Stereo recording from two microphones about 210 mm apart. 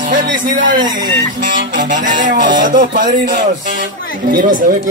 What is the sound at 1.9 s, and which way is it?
Speech, 40° right (ahead or behind).